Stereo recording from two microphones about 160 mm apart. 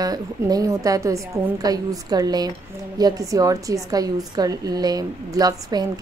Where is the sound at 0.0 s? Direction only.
25° right (ahead or behind).